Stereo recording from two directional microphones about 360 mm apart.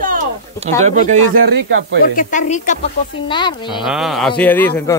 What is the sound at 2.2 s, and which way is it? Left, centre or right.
A woman's voice, left.